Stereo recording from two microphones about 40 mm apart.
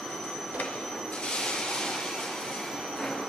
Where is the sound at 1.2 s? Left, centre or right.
Centre.